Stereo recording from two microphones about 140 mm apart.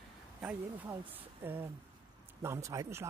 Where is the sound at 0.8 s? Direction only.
15° right (ahead or behind).